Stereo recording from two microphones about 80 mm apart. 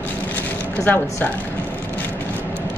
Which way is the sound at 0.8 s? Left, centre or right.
Left.